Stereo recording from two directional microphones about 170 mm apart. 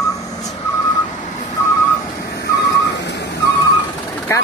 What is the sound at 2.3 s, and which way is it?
Whistling, 75° left (ahead or behind).